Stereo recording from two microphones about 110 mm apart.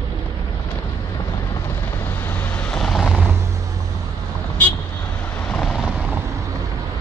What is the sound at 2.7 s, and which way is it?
Vehicle, centre (ahead or behind).